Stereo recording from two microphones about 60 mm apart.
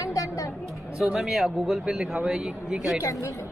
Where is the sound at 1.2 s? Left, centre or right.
Centre.